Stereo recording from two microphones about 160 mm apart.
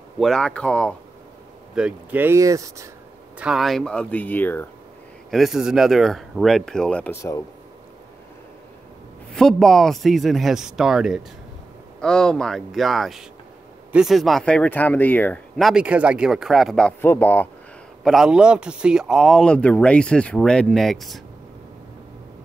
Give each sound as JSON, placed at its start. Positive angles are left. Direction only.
{"t": 0.2, "sound": "speech", "side_deg": 5}
{"t": 1.8, "sound": "speech", "side_deg": -10}
{"t": 3.3, "sound": "speech", "side_deg": -5}
{"t": 5.3, "sound": "speech", "side_deg": 0}
{"t": 9.3, "sound": "speech", "side_deg": 5}
{"t": 15.5, "sound": "speech", "side_deg": 0}
{"t": 18.0, "sound": "speech", "side_deg": -5}